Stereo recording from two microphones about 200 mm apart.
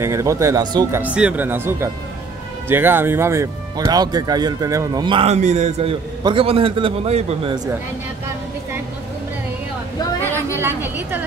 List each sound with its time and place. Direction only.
0.0 s speech: 15° right (ahead or behind)
1.0 s speech: 5° right (ahead or behind); by 7.5 s 30° right (ahead or behind)
10.3 s a woman's voice: 10° right (ahead or behind)